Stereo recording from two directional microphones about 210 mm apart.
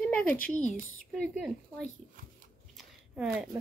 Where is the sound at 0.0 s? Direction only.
5° left (ahead or behind).